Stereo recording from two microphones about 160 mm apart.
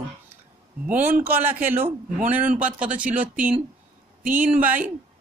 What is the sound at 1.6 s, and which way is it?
Speech, 15° right (ahead or behind).